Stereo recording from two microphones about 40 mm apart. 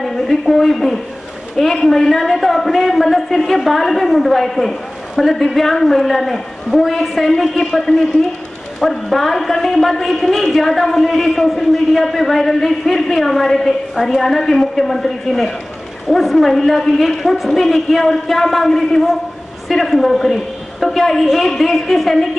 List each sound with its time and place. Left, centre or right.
0.0 s a woman's voice: centre